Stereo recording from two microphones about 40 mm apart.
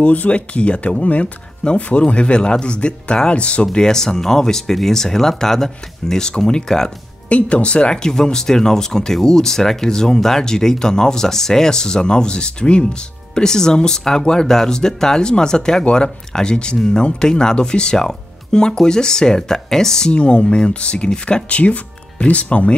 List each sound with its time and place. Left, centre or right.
0.0 s speech: left
3.7 s speech: centre
7.2 s speech: left; by 20.1 s centre
20.1 s speech: left
21.5 s speech: left